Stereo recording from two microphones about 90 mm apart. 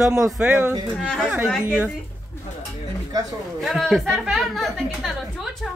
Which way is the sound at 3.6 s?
Centre (ahead or behind).